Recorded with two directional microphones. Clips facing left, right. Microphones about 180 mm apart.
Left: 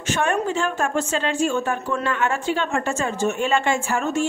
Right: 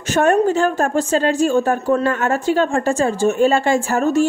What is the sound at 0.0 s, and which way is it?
A woman's voice, 40° right (ahead or behind).